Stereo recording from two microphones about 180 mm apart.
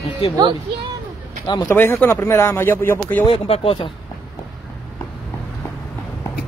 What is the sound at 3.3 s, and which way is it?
Speech, 30° left (ahead or behind).